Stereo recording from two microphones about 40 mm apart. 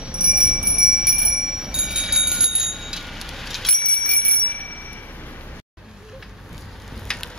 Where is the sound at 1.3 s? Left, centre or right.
Centre.